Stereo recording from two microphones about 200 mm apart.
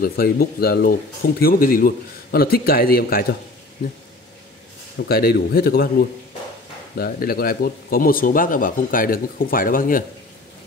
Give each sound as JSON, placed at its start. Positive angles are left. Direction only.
{"t": 0.0, "sound": "speech", "side_deg": 50}
{"t": 4.9, "sound": "speech", "side_deg": 50}